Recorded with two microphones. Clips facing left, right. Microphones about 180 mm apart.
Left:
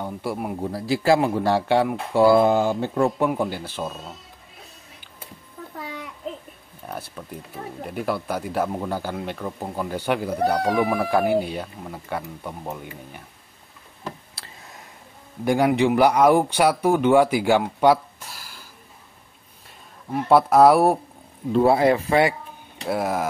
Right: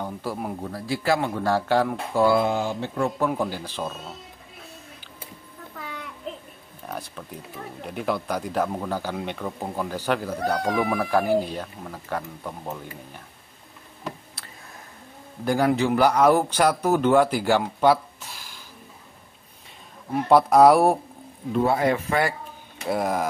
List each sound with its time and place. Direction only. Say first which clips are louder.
0.0 s speech: left 2 dB; 5° left (ahead or behind)
0.6 s speech: left 5 dB; 25° left (ahead or behind)
2.4 s speech: left 5 dB; 50° left (ahead or behind)
3.3 s speech: left 2 dB; 10° left (ahead or behind)
6.9 s speech: left 1 dB; 5° left (ahead or behind)
15.4 s speech: left 2 dB; 15° left (ahead or behind)
20.1 s speech: left 1 dB; centre (ahead or behind)
21.5 s speech: left 4 dB; 30° left (ahead or behind)
22.8 s speech: even; 5° left (ahead or behind)